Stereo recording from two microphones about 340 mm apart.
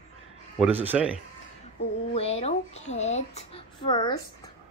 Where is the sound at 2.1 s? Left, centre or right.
Centre.